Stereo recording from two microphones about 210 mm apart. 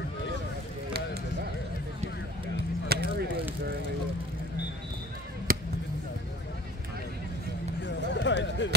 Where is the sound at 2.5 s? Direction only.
50° right (ahead or behind).